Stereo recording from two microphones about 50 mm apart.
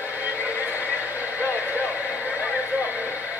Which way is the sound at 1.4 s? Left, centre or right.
Right.